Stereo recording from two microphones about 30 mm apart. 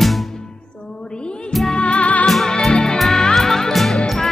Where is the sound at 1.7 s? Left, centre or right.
Left.